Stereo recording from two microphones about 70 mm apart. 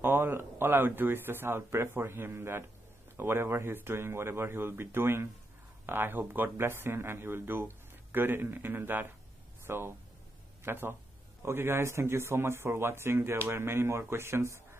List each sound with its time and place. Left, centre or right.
0.0 s speech: right